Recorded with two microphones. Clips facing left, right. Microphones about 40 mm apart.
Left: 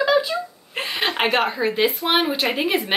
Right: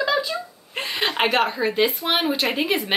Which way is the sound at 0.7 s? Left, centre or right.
Centre.